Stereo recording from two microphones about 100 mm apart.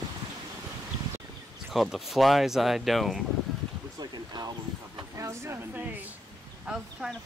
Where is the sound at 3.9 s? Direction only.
40° right (ahead or behind).